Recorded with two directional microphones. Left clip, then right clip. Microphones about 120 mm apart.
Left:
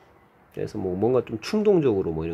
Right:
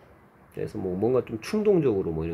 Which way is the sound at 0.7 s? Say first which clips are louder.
Left 2 dB; 40° left (ahead or behind).